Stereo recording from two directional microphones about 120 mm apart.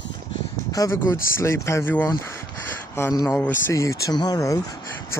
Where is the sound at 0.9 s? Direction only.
20° left (ahead or behind).